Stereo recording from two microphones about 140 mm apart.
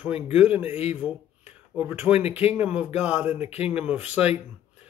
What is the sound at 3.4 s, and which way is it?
Speech, 45° left (ahead or behind).